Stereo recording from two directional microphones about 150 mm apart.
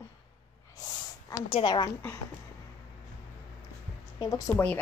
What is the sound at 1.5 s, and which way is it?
Speech, 30° left (ahead or behind).